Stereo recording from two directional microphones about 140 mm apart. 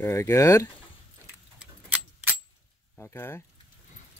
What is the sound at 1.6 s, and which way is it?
Keys jangling, 10° right (ahead or behind).